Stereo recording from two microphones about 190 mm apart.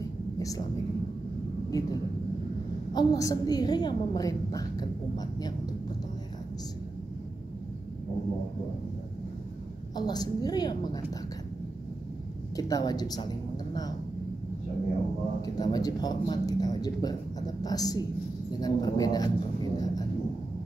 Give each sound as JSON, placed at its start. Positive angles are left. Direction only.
{"t": 1.7, "sound": "a woman's voice", "side_deg": 15}
{"t": 9.9, "sound": "a woman's voice", "side_deg": 20}
{"t": 12.5, "sound": "a woman's voice", "side_deg": 20}
{"t": 15.4, "sound": "a woman's voice", "side_deg": 20}